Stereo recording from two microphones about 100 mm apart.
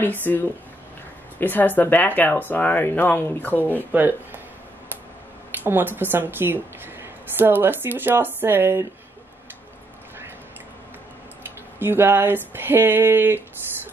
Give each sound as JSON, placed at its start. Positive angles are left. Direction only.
{"t": 0.0, "sound": "speech", "side_deg": 20}
{"t": 3.9, "sound": "a woman's voice", "side_deg": -20}
{"t": 5.7, "sound": "a woman's voice", "side_deg": -20}
{"t": 11.8, "sound": "a woman's voice", "side_deg": -20}